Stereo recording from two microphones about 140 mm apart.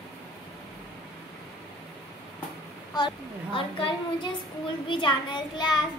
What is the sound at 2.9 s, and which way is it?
A child's voice, 35° left (ahead or behind).